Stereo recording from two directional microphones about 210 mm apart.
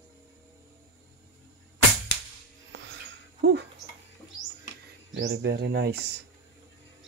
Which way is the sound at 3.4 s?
55° right (ahead or behind).